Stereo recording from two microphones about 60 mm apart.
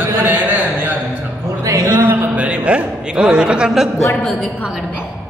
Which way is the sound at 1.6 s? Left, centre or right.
Right.